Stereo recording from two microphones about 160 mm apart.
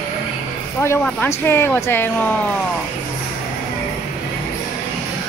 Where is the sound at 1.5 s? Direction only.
15° left (ahead or behind).